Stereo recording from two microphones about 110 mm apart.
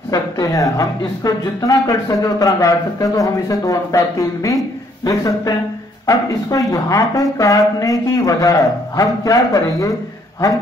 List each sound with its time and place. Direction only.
0.1 s speech: 30° left (ahead or behind)